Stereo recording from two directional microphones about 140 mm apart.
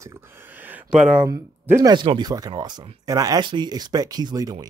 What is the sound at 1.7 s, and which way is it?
Speech, 30° right (ahead or behind).